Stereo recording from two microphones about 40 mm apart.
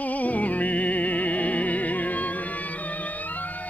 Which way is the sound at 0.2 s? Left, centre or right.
Left.